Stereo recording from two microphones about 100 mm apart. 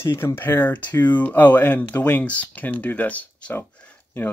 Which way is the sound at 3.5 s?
20° left (ahead or behind).